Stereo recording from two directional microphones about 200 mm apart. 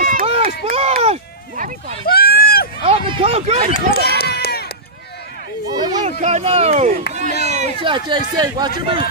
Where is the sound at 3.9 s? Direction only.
50° left (ahead or behind).